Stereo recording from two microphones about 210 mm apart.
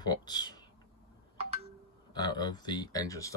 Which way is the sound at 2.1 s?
20° left (ahead or behind).